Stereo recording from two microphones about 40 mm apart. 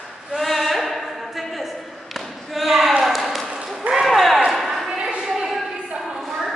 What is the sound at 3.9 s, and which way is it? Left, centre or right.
Basketball bounce, centre.